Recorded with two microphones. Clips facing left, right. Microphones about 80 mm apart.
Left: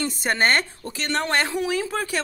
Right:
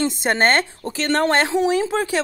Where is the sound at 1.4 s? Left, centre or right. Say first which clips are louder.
Right 6 dB; right.